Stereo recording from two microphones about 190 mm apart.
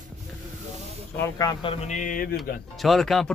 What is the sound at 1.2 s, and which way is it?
Speech, 20° left (ahead or behind).